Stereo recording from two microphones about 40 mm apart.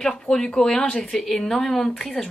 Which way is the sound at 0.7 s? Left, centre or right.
Left.